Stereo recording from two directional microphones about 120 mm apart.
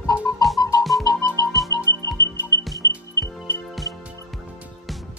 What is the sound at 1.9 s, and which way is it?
Music, 25° left (ahead or behind).